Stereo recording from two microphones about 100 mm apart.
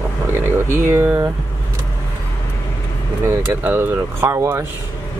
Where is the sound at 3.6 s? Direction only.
25° right (ahead or behind).